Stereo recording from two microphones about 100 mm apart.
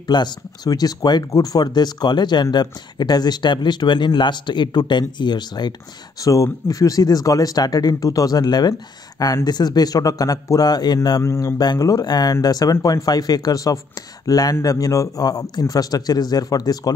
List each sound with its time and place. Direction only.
0.0 s speech: 45° left (ahead or behind)
6.2 s speech: 35° left (ahead or behind)
11.2 s speech: 30° left (ahead or behind)
11.5 s speech: 45° left (ahead or behind)